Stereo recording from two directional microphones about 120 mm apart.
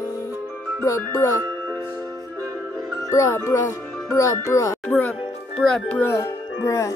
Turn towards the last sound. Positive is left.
turn(degrees=25)  # may be behind; listen again after turning